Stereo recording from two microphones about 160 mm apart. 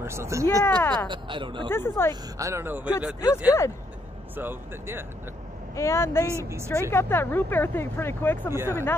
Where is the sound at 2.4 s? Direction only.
15° right (ahead or behind).